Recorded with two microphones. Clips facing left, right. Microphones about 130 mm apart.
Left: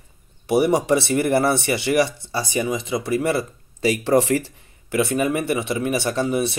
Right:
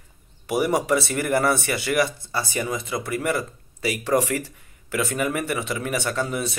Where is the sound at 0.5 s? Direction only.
30° left (ahead or behind).